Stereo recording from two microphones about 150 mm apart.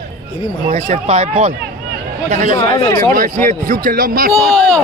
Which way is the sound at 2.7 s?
25° left (ahead or behind).